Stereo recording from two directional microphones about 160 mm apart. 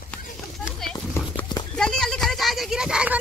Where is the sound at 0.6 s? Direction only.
5° left (ahead or behind).